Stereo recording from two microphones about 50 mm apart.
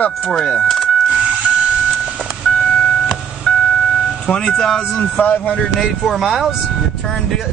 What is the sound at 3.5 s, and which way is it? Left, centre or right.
Music, left.